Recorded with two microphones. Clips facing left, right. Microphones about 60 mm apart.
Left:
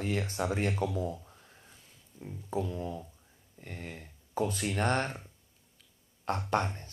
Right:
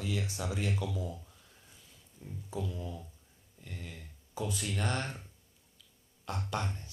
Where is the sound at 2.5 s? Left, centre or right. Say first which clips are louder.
Left 5 dB; left.